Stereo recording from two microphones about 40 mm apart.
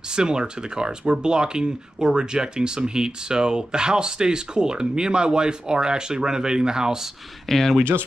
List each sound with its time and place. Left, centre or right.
0.1 s speech: centre
7.4 s speech: centre